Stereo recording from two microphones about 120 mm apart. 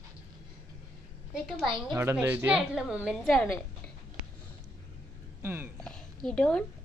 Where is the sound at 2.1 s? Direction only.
15° right (ahead or behind).